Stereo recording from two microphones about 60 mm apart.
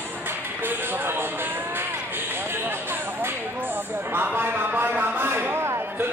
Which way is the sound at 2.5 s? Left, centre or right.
Right.